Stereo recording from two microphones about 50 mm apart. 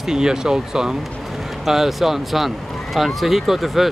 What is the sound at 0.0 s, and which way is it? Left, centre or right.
Speech, centre.